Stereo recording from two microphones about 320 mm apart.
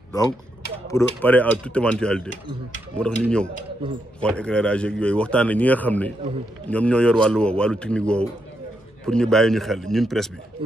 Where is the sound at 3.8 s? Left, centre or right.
Centre.